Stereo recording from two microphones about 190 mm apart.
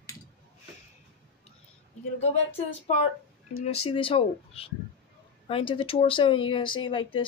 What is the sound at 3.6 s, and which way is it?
Speech, 30° left (ahead or behind).